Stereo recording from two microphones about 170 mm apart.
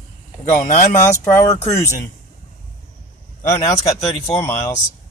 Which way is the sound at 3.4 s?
20° left (ahead or behind).